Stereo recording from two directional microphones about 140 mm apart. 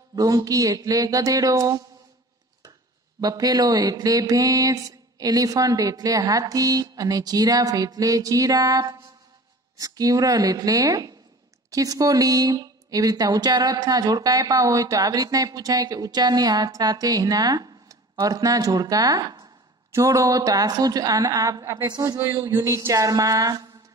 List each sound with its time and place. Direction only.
0.1 s speech: 25° right (ahead or behind)
3.2 s speech: 25° right (ahead or behind)